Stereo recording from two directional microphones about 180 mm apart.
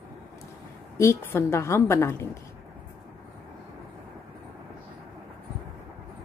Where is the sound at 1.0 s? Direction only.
15° left (ahead or behind).